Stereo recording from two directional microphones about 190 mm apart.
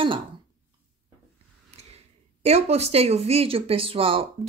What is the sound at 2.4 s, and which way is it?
Speech, 35° right (ahead or behind).